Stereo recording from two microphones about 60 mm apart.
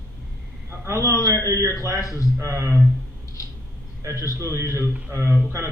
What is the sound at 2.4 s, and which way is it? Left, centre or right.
Speech, right.